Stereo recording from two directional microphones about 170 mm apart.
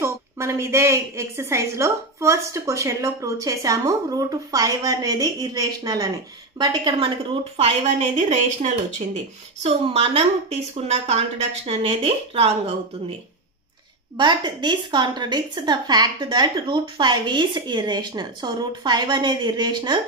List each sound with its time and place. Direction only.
0.0 s a woman's voice: 15° right (ahead or behind); by 12.7 s 35° right (ahead or behind)
14.1 s a woman's voice: 25° right (ahead or behind)